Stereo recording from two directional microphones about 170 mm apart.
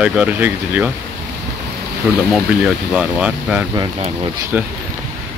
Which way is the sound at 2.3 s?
Centre (ahead or behind).